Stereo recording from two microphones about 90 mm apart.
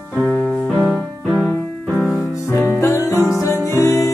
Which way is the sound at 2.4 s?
30° left (ahead or behind).